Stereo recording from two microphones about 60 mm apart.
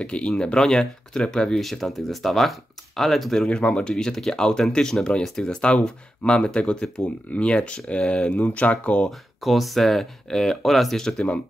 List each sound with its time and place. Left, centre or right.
0.0 s speech: centre
3.4 s speech: left
9.4 s speech: centre